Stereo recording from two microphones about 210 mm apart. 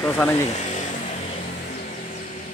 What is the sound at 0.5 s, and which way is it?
Vehicle, 35° left (ahead or behind).